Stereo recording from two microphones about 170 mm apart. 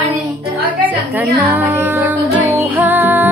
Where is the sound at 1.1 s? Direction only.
10° right (ahead or behind).